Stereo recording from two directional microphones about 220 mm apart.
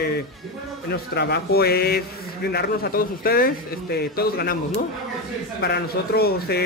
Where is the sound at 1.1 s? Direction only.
50° left (ahead or behind).